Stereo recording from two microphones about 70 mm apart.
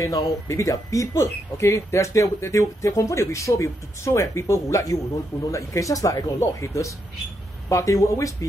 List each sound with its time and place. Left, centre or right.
0.0 s speech: left